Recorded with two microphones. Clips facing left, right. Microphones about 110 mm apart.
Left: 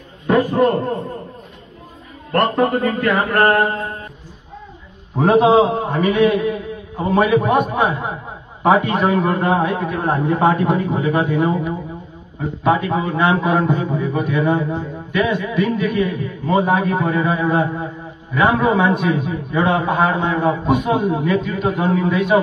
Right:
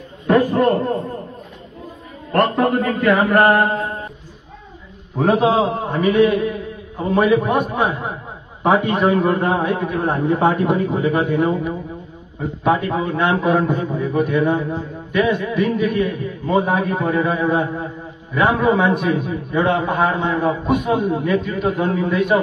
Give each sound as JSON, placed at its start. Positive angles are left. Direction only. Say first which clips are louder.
{"t": 0.5, "sound": "a man's voice", "louder": "even", "side_deg": 0}
{"t": 2.3, "sound": "a man's voice", "louder": "even", "side_deg": 0}
{"t": 3.3, "sound": "mantra", "louder": "even", "side_deg": -10}
{"t": 5.1, "sound": "a man's voice", "louder": "left 3 dB", "side_deg": 5}
{"t": 5.4, "sound": "a man's voice", "louder": "left 6 dB", "side_deg": 25}
{"t": 5.9, "sound": "a man's voice", "louder": "even", "side_deg": 0}
{"t": 17.8, "sound": "a sound", "louder": "left 1 dB", "side_deg": 0}
{"t": 18.9, "sound": "a man's voice", "louder": "even", "side_deg": 0}